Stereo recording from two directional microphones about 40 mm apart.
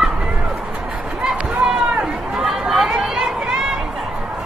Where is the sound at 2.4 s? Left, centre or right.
Centre.